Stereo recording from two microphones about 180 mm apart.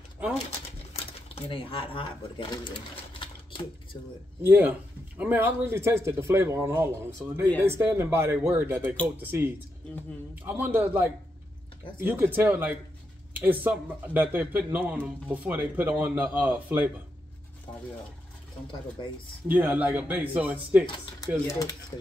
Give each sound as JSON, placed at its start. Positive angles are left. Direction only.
{"t": 1.3, "sound": "speech", "side_deg": 30}
{"t": 3.1, "sound": "sewing machine", "side_deg": 30}
{"t": 4.4, "sound": "a man's voice", "side_deg": -10}
{"t": 18.9, "sound": "a man's voice", "side_deg": -10}
{"t": 20.8, "sound": "speech", "side_deg": 25}